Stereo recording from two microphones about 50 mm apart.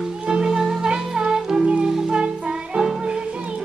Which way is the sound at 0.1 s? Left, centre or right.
Centre.